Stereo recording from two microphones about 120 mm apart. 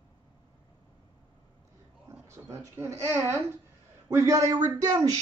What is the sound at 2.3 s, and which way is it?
A man's voice, 25° right (ahead or behind).